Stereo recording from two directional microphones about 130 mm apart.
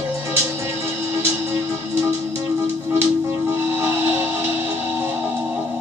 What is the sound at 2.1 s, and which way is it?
Music, 20° right (ahead or behind).